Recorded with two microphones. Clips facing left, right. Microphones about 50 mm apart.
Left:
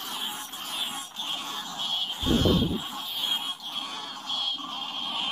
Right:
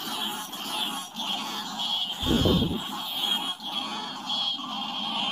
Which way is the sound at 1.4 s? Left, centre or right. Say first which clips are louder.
Right 2 dB; centre.